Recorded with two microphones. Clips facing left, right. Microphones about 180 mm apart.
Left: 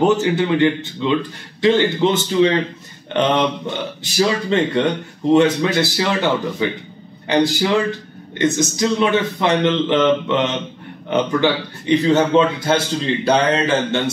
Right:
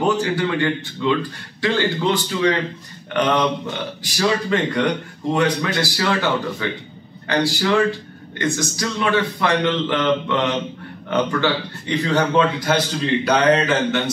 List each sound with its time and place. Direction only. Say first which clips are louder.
0.0 s a man's voice: left 4 dB; 20° left (ahead or behind)